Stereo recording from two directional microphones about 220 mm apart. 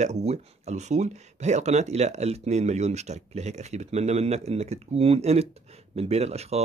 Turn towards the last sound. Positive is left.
turn(degrees=-30)  # may be behind; listen again after turning